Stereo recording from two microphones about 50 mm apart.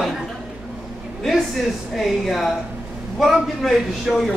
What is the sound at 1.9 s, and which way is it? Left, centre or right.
A man's voice, centre.